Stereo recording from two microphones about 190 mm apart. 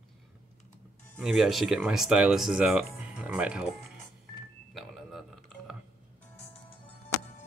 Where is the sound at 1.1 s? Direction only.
Centre (ahead or behind).